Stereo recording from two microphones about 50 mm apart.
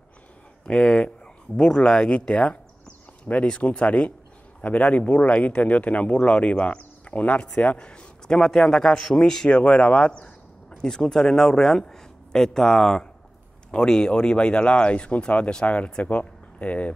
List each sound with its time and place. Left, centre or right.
0.7 s speech: centre
8.4 s speech: centre
9.5 s speech: left